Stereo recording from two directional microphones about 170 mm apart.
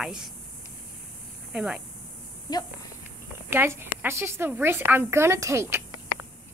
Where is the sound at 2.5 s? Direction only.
25° left (ahead or behind).